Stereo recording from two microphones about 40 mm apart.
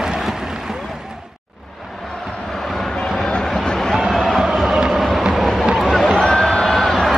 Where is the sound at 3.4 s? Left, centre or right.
Centre.